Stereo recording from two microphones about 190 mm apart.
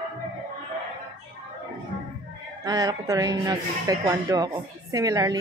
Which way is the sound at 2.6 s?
20° right (ahead or behind).